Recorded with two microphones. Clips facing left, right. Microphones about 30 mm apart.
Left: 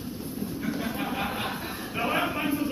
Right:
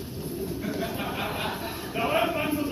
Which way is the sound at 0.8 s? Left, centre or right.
Centre.